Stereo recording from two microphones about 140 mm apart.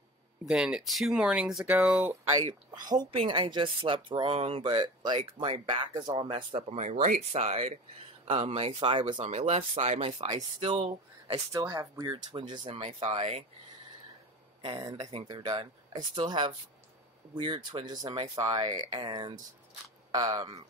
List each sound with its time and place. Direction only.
0.5 s speech: 5° right (ahead or behind)
2.9 s speech: 30° right (ahead or behind); by 11.4 s 50° right (ahead or behind)
11.5 s speech: 25° right (ahead or behind); by 13.5 s 45° right (ahead or behind)
14.8 s speech: 25° right (ahead or behind)